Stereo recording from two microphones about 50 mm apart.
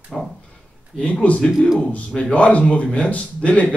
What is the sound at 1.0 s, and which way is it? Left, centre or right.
Speech, left.